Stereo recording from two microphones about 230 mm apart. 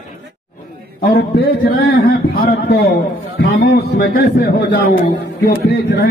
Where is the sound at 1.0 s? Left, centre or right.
Left.